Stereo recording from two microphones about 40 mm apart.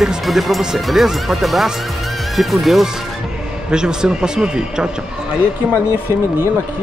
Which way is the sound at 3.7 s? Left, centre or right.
Centre.